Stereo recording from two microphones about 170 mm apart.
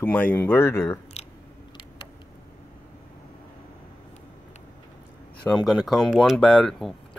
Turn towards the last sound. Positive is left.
turn(degrees=0)  # may be behind; listen again after turning